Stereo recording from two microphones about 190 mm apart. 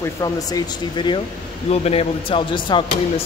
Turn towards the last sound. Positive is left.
turn(degrees=25)  # may be behind; listen again after turning